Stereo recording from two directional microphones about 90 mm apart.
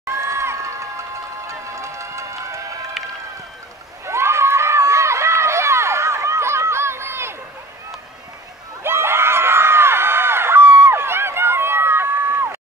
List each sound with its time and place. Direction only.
0.1 s a sound: 35° right (ahead or behind)
4.0 s run: 30° right (ahead or behind)
8.8 s screaming: 30° right (ahead or behind)